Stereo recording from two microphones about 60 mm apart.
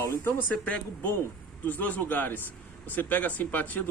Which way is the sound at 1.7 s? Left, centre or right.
Left.